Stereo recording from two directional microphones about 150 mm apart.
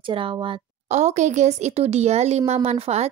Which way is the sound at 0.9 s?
50° right (ahead or behind).